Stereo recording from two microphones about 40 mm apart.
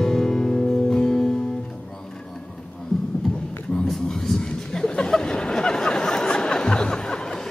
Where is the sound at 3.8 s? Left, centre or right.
Centre.